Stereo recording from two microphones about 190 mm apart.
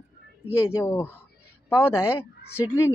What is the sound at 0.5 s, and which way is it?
Speech, 15° left (ahead or behind).